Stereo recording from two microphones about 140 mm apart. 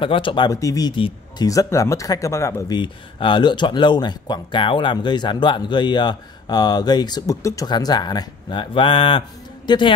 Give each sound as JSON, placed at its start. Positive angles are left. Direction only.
{"t": 0.0, "sound": "speech", "side_deg": 40}
{"t": 0.5, "sound": "speech", "side_deg": 25}
{"t": 1.5, "sound": "speech", "side_deg": 25}
{"t": 2.7, "sound": "speech", "side_deg": 35}